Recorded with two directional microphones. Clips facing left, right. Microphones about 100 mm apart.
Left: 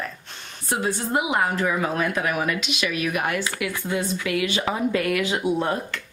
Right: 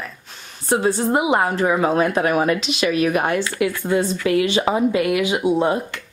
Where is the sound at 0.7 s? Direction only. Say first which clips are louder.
Right 7 dB; 30° right (ahead or behind).